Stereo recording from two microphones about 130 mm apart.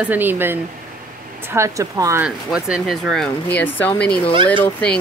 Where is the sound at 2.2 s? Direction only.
5° right (ahead or behind).